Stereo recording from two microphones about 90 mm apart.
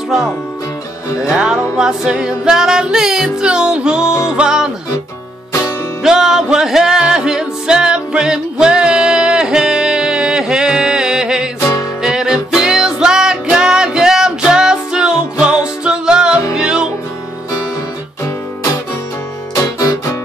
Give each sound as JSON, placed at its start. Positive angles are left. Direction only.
{"t": 1.3, "sound": "music", "side_deg": -10}
{"t": 5.5, "sound": "music", "side_deg": 40}
{"t": 6.0, "sound": "music", "side_deg": -5}
{"t": 19.5, "sound": "music", "side_deg": 40}